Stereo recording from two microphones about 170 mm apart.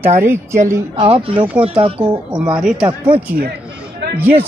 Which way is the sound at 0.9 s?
35° right (ahead or behind).